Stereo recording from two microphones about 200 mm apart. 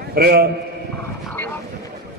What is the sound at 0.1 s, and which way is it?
Speech, 50° right (ahead or behind).